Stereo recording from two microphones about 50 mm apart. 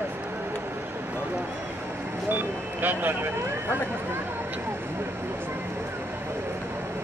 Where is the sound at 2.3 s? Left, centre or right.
Right.